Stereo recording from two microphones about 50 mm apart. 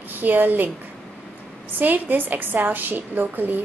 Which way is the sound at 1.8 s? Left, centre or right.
Right.